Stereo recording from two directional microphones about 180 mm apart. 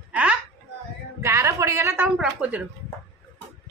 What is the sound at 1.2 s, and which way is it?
A woman's voice, 15° right (ahead or behind).